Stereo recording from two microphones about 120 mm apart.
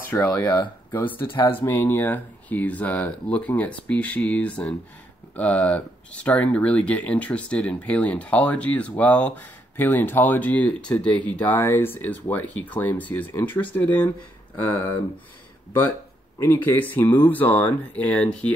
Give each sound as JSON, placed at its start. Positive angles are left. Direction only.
{"t": 0.1, "sound": "speech", "side_deg": 10}
{"t": 0.4, "sound": "speech", "side_deg": 35}
{"t": 1.6, "sound": "speech", "side_deg": 20}
{"t": 16.3, "sound": "speech", "side_deg": 20}